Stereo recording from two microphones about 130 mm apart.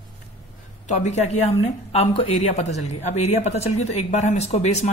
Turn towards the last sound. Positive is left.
turn(degrees=55)  # may be behind; listen again after turning